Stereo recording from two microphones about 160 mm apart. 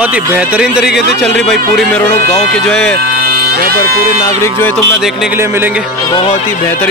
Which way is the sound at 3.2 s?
80° right.